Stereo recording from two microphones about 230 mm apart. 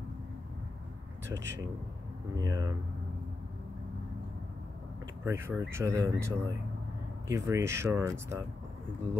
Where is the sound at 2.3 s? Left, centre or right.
Centre.